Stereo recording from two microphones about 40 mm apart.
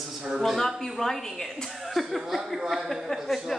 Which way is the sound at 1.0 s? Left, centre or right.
Centre.